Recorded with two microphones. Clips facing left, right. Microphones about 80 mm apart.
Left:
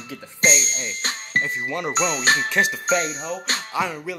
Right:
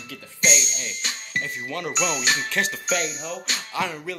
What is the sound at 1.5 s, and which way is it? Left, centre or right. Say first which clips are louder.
Speech: left 4 dB; left.